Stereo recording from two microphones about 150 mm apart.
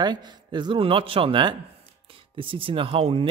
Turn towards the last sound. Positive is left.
turn(degrees=-40)  # may be behind; listen again after turning